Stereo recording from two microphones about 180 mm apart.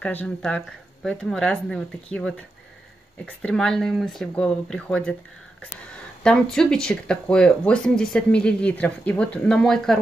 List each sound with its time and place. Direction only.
0.0 s speech: 10° left (ahead or behind)
6.2 s speech: 5° left (ahead or behind)